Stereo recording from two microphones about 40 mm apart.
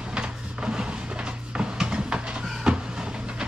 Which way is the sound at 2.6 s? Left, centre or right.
Right.